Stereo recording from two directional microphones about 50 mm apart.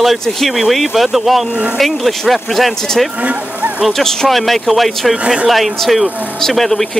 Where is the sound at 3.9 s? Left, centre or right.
Centre.